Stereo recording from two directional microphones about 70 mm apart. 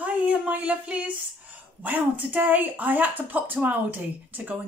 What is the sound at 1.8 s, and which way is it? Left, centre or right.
Speech, right.